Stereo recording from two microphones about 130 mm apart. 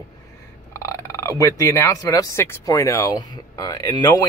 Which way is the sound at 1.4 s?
25° left (ahead or behind).